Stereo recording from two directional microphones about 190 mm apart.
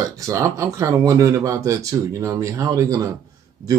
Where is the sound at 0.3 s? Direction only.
15° right (ahead or behind).